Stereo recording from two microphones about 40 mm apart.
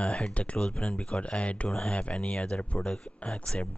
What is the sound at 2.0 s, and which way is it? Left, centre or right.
Speech, left.